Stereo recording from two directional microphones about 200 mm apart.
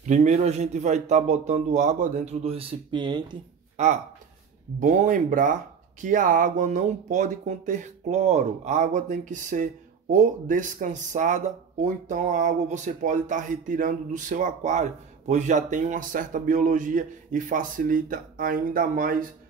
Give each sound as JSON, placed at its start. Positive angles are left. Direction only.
{"t": 0.0, "sound": "speech", "side_deg": -35}
{"t": 3.7, "sound": "speech", "side_deg": -35}